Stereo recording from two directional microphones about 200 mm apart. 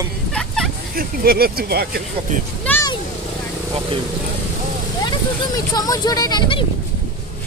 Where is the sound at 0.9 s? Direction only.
50° right (ahead or behind).